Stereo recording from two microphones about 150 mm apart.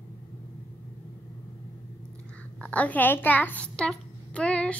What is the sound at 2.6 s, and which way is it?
A child's voice, 10° left (ahead or behind).